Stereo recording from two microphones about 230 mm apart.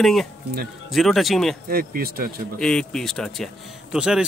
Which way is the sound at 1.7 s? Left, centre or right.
Right.